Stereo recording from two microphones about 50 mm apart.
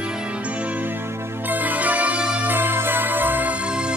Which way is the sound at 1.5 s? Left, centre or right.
Right.